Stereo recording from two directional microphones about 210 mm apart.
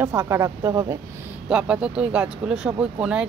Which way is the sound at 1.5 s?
5° right (ahead or behind).